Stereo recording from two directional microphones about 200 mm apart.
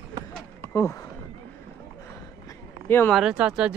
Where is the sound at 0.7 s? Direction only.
15° left (ahead or behind).